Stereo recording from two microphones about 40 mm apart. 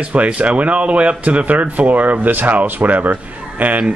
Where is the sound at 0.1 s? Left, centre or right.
Right.